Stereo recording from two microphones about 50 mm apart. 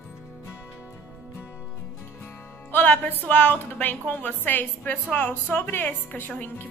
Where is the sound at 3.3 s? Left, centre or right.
Left.